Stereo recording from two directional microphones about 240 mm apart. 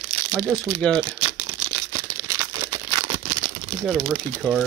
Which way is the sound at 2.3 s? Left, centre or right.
Centre.